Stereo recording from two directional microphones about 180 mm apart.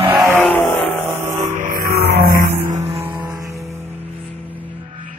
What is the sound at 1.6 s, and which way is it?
Music, 55° right (ahead or behind).